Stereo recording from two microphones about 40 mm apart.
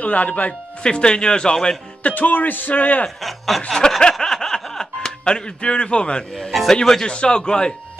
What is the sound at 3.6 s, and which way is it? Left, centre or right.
Speech, centre.